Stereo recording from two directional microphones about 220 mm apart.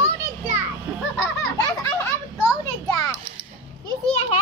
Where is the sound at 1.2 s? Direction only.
15° left (ahead or behind).